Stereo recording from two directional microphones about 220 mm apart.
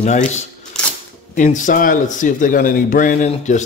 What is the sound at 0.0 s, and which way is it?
Speech, 30° left (ahead or behind).